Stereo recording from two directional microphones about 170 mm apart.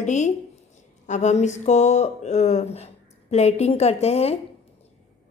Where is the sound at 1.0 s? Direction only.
45° left (ahead or behind).